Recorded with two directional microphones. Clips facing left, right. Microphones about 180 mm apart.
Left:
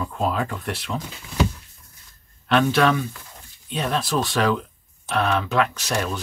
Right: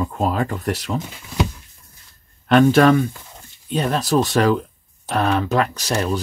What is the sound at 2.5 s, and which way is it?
Speech, 45° right (ahead or behind).